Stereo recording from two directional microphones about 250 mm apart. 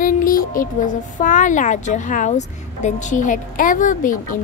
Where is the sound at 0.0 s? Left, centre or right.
Left.